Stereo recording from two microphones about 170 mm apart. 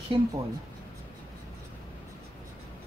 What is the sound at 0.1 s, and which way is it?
Speech, 30° right (ahead or behind).